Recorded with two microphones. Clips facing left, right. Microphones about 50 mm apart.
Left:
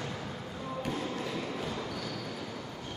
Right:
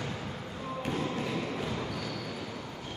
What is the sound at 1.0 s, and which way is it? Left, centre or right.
Basketball bounce, centre.